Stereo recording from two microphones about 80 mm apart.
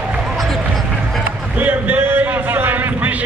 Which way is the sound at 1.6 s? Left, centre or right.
Right.